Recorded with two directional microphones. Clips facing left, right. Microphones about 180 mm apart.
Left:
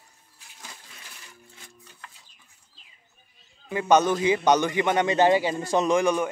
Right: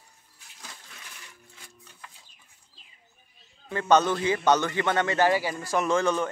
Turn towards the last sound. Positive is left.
turn(degrees=15)  # may be behind; listen again after turning